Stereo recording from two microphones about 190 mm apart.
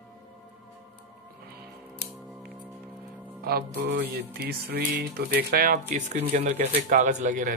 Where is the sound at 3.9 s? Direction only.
60° right (ahead or behind).